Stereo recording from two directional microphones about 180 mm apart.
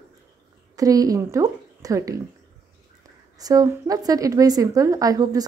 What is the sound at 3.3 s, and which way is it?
A woman's voice, 20° right (ahead or behind).